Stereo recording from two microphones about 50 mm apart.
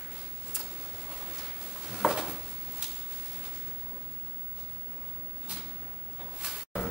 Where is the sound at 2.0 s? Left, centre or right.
Centre.